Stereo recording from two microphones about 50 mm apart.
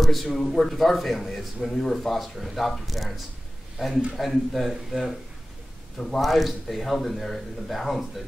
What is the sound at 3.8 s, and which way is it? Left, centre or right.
Speech, centre.